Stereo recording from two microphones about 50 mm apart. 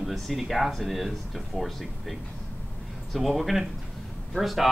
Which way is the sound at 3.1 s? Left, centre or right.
Centre.